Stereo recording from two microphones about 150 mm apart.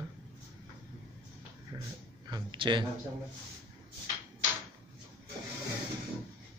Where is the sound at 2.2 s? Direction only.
30° right (ahead or behind).